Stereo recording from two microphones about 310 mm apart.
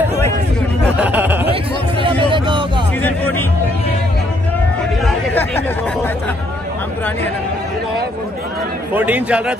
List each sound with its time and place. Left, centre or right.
0.9 s a sound: centre
1.5 s chatter: centre
2.3 s music: centre
3.0 s music: centre
5.0 s a sound: centre
8.9 s a man's voice: centre